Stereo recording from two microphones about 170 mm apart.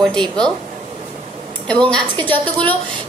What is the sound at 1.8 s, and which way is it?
Speech, 30° right (ahead or behind).